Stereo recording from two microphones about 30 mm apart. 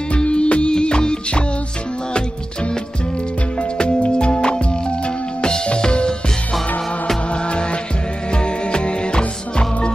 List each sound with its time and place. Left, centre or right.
0.1 s music: left
3.5 s music: left
7.2 s music: left